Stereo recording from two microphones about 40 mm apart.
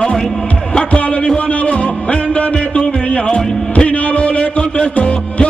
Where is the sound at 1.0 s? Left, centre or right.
Left.